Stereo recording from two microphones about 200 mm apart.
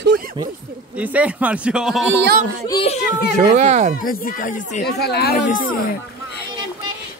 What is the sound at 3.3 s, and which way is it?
Speech, 35° right (ahead or behind).